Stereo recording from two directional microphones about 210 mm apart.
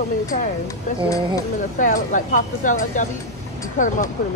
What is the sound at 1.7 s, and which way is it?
Speech, 40° left (ahead or behind).